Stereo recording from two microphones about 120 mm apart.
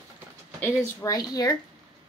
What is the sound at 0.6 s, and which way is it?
Speech, 25° left (ahead or behind).